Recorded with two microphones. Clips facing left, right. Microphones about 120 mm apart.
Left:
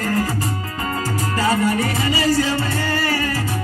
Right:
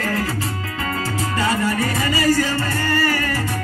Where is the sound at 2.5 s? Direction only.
15° left (ahead or behind).